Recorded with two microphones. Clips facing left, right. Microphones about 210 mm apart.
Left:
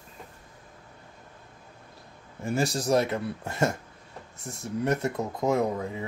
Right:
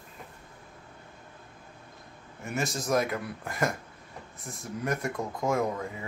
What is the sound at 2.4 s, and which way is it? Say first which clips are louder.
Speech: left 5 dB; 30° left (ahead or behind).